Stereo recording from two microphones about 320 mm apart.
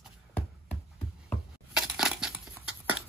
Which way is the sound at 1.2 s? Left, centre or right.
Centre.